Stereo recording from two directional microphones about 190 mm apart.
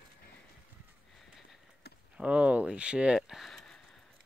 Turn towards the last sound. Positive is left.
turn(degrees=0)  # may be behind; listen again after turning